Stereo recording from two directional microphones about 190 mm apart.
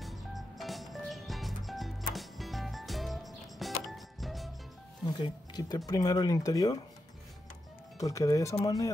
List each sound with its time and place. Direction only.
0.0 s music: centre (ahead or behind)
5.2 s speech: 20° left (ahead or behind)
8.0 s speech: 15° left (ahead or behind)